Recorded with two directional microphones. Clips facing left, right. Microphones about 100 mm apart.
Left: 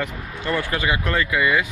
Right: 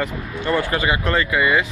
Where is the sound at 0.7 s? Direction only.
45° right (ahead or behind).